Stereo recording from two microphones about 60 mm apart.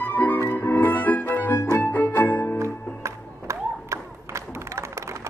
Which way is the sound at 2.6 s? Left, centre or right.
Right.